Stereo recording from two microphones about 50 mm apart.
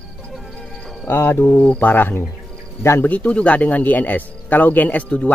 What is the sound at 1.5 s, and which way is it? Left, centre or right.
Speech, left.